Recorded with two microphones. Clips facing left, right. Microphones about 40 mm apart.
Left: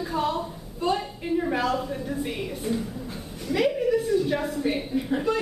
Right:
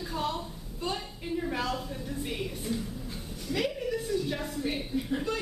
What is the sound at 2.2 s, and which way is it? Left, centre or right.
A woman's voice, centre.